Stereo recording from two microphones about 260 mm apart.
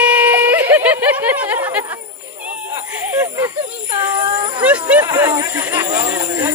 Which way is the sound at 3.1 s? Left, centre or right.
Centre.